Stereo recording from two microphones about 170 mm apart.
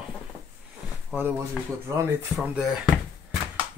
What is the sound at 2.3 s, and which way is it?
Speech, 5° right (ahead or behind).